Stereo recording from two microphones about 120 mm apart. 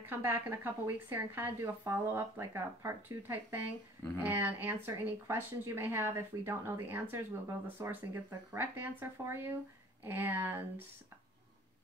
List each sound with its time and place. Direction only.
0.0 s a woman's voice: 15° right (ahead or behind)